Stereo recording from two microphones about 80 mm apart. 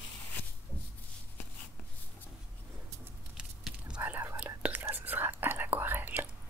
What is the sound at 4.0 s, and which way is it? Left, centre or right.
Whispering, right.